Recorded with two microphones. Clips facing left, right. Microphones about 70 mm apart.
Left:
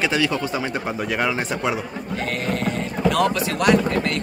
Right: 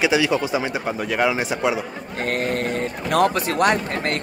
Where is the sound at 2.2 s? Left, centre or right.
Right.